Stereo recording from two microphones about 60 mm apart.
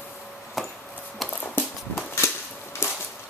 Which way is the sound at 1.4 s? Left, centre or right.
Left.